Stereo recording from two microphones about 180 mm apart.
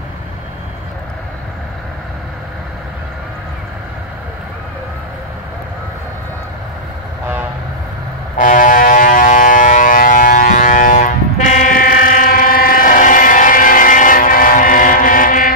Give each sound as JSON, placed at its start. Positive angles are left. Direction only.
{"t": 8.4, "sound": "civil defense siren", "side_deg": 45}